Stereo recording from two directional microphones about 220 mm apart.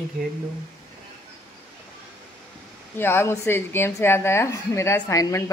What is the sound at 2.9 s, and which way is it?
A woman's voice, 10° left (ahead or behind).